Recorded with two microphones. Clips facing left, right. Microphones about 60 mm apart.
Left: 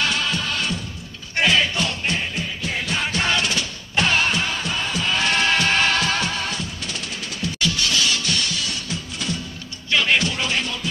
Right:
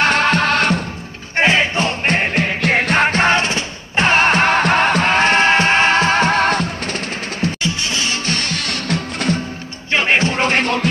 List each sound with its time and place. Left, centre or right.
0.0 s music: right
1.3 s music: right
2.1 s music: right
7.6 s music: right
9.8 s music: right